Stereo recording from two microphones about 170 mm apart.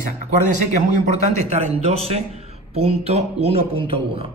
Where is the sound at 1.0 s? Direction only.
40° right (ahead or behind).